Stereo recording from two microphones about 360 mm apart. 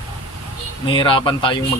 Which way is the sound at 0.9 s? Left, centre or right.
Centre.